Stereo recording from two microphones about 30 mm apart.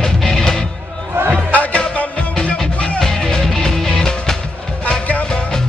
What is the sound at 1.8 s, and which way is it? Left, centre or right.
Music, left.